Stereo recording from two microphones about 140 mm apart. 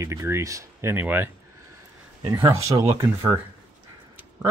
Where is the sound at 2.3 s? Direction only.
20° right (ahead or behind).